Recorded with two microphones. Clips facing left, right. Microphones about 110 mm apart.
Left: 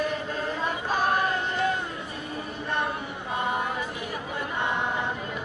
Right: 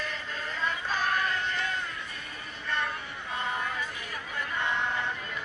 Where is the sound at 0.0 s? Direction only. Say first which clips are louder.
Left 8 dB; 20° left (ahead or behind).